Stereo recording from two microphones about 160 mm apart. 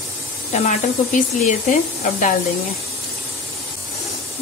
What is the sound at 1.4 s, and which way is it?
Speech, 55° left (ahead or behind).